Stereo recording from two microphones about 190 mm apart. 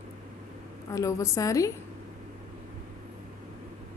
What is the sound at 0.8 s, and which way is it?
Speech, 15° left (ahead or behind).